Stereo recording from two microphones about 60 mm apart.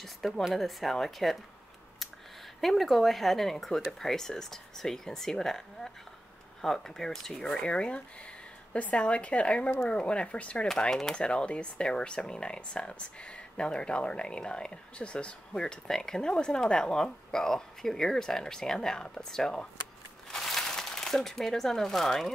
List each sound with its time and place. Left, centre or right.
0.0 s speech: centre
2.6 s speech: centre
7.5 s a woman's voice: centre
20.2 s crumpling: centre